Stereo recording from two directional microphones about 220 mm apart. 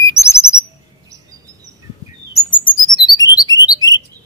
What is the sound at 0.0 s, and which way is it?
Bird, 15° left (ahead or behind).